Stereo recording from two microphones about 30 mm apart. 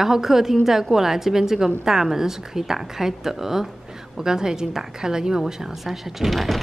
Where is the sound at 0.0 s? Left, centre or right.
Centre.